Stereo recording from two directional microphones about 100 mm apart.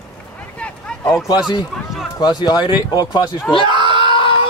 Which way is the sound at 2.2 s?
45° left (ahead or behind).